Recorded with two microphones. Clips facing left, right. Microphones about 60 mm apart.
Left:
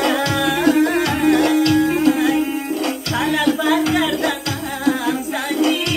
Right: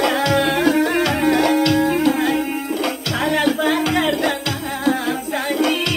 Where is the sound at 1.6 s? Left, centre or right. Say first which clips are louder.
Left 1 dB; right.